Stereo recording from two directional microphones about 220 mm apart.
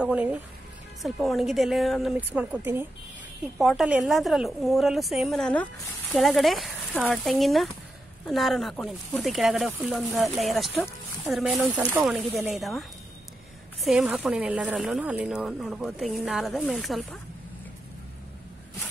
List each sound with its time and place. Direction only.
0.0 s speech: 5° right (ahead or behind)
13.8 s speech: 5° right (ahead or behind)